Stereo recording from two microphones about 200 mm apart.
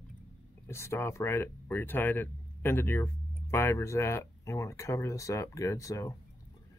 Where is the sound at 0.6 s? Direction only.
15° left (ahead or behind).